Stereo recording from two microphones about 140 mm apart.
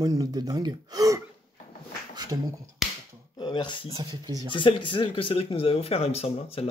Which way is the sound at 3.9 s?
25° right (ahead or behind).